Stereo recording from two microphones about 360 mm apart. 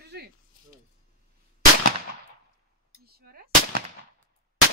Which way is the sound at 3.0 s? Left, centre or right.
Right.